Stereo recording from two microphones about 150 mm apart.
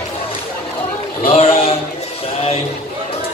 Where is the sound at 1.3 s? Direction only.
40° left (ahead or behind).